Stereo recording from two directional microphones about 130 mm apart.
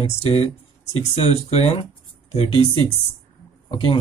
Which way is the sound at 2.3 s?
40° left (ahead or behind).